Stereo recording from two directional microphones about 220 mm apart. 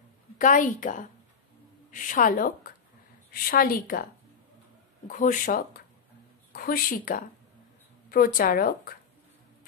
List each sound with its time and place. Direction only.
0.4 s a woman's voice: 35° left (ahead or behind)